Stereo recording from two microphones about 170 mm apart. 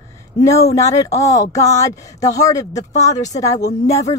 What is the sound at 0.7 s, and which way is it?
Speech, 20° left (ahead or behind).